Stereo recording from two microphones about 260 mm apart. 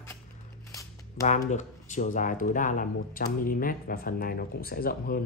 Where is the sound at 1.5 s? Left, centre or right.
Left.